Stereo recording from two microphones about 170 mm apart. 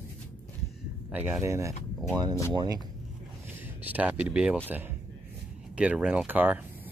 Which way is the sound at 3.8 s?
10° right (ahead or behind).